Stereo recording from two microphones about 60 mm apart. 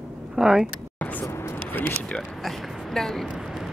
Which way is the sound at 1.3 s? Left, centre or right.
Left.